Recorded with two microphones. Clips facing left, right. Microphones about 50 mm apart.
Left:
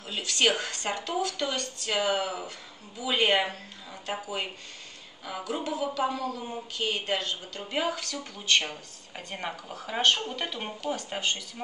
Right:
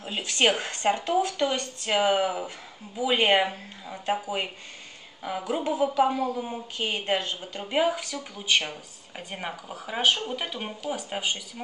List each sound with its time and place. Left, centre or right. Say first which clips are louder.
0.0 s a woman's voice: right 2 dB; right